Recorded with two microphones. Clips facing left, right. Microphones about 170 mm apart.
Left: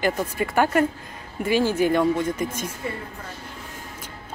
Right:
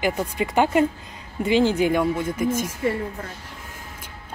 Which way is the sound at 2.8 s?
85° right.